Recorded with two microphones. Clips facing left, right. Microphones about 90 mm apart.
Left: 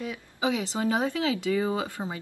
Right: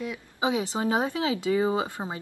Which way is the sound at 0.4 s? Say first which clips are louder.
Right 1 dB; 20° right (ahead or behind).